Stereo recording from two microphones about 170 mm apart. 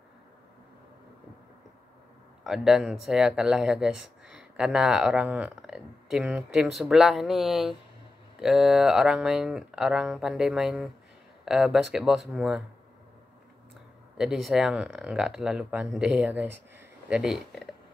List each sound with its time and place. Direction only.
2.4 s speech: 5° right (ahead or behind)
14.1 s speech: 5° right (ahead or behind)